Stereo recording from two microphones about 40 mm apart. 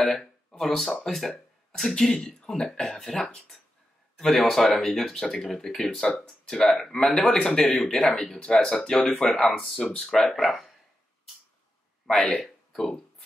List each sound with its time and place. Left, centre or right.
0.0 s a sound: centre
0.6 s speech: centre
12.1 s speech: centre